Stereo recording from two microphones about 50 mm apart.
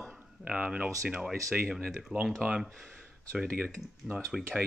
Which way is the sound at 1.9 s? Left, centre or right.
Centre.